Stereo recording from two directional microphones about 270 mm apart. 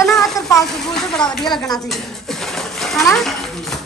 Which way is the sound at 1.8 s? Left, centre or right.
Centre.